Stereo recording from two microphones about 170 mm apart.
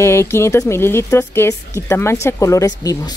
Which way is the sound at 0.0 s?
15° left (ahead or behind).